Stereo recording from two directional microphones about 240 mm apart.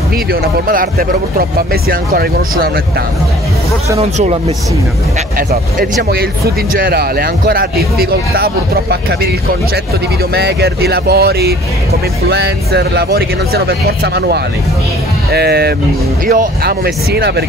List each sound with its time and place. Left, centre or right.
0.3 s speech: right
4.0 s speech: right
5.5 s speech: right
10.3 s speech: right